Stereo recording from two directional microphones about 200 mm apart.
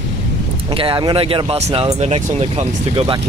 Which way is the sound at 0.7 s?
25° right (ahead or behind).